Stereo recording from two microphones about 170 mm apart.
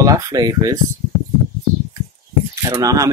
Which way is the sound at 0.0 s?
20° right (ahead or behind).